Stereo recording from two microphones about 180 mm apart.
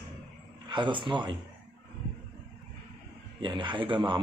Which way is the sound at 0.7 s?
25° right (ahead or behind).